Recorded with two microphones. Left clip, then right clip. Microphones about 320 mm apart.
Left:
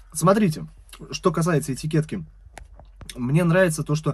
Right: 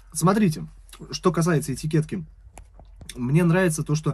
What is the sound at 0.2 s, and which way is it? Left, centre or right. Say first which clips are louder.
Speech: left 3 dB; centre.